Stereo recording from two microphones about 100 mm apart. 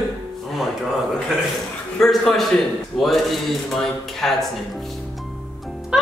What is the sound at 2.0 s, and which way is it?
Speech, 5° left (ahead or behind).